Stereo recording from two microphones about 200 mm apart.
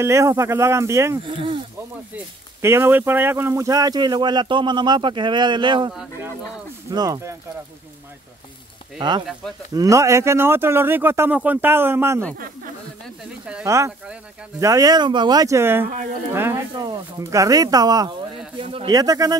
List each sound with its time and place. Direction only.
0.0 s speech: 15° right (ahead or behind)
1.3 s speech: 25° right (ahead or behind)
2.1 s speech: 10° right (ahead or behind)
8.9 s speech: 20° right (ahead or behind)
13.2 s speech: 5° right (ahead or behind)
13.7 s speech: 15° right (ahead or behind)